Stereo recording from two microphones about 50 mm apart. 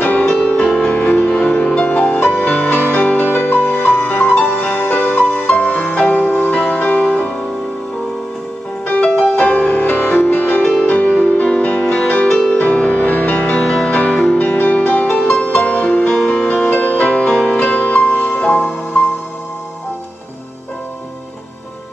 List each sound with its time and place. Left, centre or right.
0.0 s music: left
2.1 s music: left
4.1 s music: left
8.8 s music: left
10.9 s music: left
14.2 s music: left
17.1 s music: centre
17.6 s music: left